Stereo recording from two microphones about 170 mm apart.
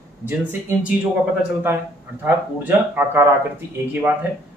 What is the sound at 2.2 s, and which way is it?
Speech, 10° right (ahead or behind).